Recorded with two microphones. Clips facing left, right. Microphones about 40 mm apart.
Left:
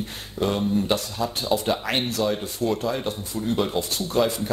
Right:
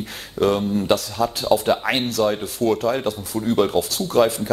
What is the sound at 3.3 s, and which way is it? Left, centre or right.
Speech, right.